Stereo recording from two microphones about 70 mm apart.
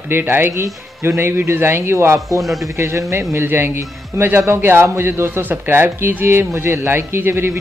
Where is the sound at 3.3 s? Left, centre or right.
Right.